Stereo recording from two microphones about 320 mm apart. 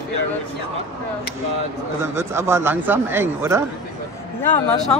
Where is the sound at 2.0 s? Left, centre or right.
Centre.